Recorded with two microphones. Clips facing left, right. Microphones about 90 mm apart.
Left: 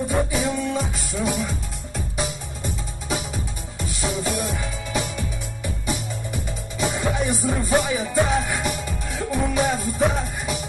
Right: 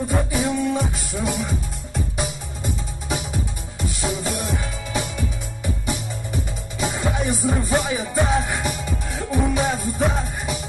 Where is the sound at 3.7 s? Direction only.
15° right (ahead or behind).